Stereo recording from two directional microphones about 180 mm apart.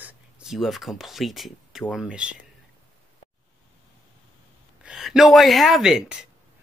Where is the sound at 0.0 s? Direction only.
5° right (ahead or behind).